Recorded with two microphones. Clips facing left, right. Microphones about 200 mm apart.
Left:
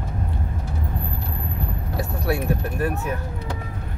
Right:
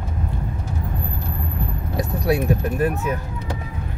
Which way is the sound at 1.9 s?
20° right (ahead or behind).